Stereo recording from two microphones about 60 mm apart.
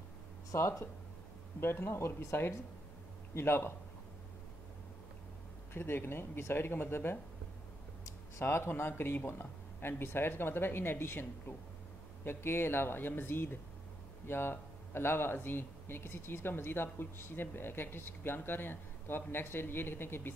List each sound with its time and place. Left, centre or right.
0.5 s speech: left
1.6 s a man's voice: left
5.7 s speech: left